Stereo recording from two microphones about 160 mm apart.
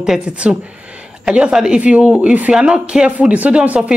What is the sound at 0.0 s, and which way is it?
Speech, 5° right (ahead or behind).